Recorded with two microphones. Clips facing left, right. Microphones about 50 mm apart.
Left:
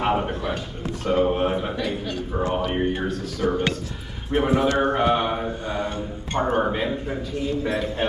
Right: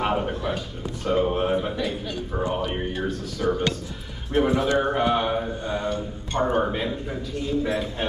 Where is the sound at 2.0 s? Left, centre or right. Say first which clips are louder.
Left 2 dB; centre.